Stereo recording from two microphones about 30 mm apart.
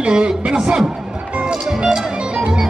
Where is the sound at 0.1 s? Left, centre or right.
Right.